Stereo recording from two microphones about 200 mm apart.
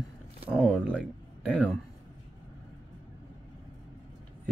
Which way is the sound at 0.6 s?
5° left (ahead or behind).